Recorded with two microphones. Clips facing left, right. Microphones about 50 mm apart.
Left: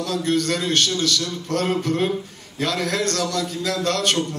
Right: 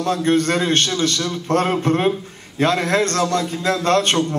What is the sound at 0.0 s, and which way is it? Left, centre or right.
A man's voice, right.